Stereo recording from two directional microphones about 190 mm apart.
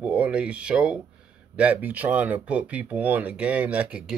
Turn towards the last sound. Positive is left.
turn(degrees=-5)  # may be behind; listen again after turning